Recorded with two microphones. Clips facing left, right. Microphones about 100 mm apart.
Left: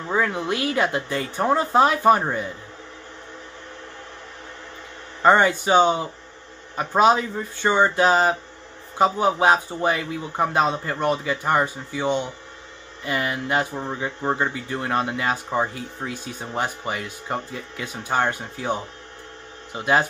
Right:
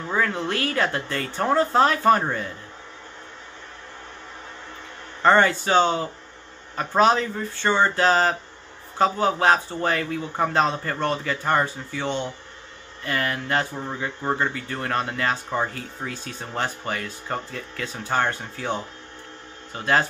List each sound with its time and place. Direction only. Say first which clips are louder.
0.1 s speech: left 2 dB; 15° left (ahead or behind)
5.2 s speech: left 1 dB; 15° left (ahead or behind)